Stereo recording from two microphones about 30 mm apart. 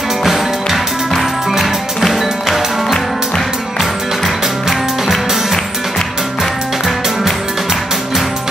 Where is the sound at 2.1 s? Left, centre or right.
Centre.